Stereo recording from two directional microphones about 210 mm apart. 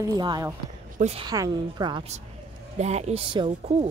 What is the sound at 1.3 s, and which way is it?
Speech, 20° right (ahead or behind).